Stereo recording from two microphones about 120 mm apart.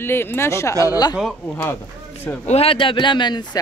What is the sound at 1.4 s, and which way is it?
Speech, 20° left (ahead or behind).